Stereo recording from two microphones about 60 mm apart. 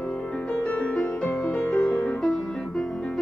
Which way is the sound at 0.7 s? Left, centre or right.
Left.